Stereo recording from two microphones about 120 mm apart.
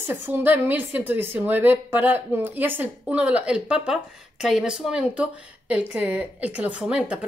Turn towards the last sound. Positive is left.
turn(degrees=-10)  # may be behind; listen again after turning